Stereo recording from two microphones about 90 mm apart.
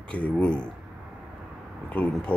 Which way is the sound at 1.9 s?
15° left (ahead or behind).